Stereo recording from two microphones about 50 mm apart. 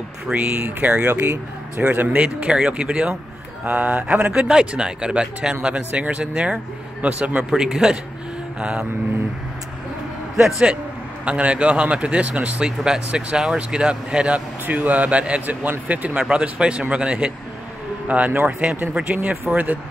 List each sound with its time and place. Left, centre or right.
0.3 s speech: right
2.1 s speech: right
4.3 s speech: centre
7.5 s a man's voice: centre
11.2 s speech: right
16.3 s speech: right